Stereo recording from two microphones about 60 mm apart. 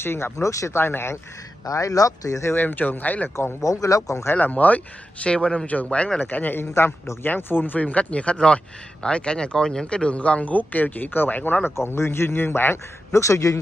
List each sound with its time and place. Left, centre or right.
0.0 s speech: left
0.4 s speech: left
0.7 s speech: left
1.7 s speech: left
2.5 s speech: left
3.8 s speech: left
4.4 s speech: left
6.2 s speech: left
6.7 s a man's voice: left
7.2 s speech: left
7.8 s speech: left
11.7 s a man's voice: left
13.2 s speech: left